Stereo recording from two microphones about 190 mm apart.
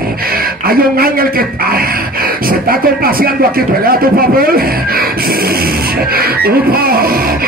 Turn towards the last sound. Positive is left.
turn(degrees=-50)  # may be behind; listen again after turning